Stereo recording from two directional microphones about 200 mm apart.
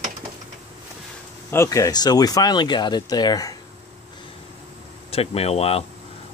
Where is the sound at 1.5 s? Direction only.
15° left (ahead or behind).